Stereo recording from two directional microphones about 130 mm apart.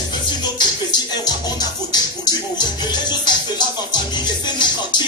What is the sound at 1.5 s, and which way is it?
Music, 30° left (ahead or behind).